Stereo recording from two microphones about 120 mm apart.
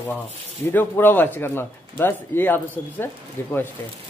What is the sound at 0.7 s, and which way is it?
Speech, 15° left (ahead or behind).